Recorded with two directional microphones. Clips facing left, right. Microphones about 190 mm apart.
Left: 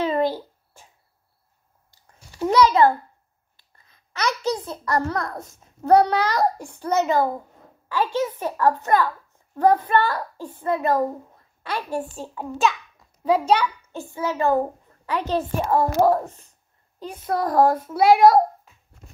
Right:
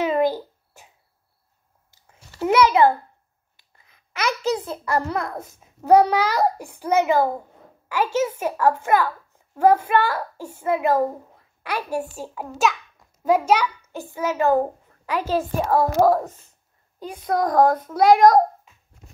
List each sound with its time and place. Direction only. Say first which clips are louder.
0.0 s a sound: right 2 dB; 15° right (ahead or behind)
2.4 s a sound: even; 15° right (ahead or behind)
3.9 s babbling: even; 10° right (ahead or behind)
4.9 s a child's voice: even; 10° right (ahead or behind)
14.1 s a child's voice: right 2 dB; 15° right (ahead or behind)
17.4 s a child's voice: right 1 dB; 5° left (ahead or behind)